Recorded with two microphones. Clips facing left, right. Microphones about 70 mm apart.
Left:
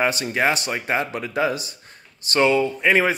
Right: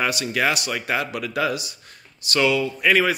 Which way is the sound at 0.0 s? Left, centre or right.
Left.